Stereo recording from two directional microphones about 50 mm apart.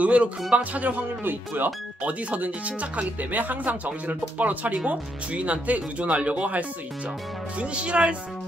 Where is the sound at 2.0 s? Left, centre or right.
Right.